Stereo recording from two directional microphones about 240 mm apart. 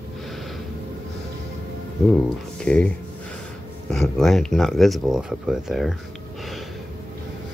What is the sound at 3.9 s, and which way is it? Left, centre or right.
Speech, centre.